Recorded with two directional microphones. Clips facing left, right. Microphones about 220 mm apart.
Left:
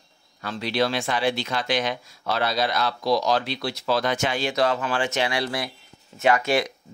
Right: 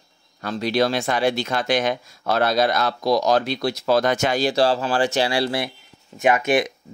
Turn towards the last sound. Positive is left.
turn(degrees=-20)  # may be behind; listen again after turning